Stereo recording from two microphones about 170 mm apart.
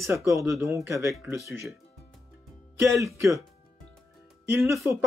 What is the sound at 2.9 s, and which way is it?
Speech, 20° right (ahead or behind).